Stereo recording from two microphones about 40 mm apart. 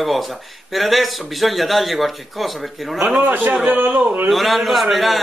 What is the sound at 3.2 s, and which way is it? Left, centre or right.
Speech, right.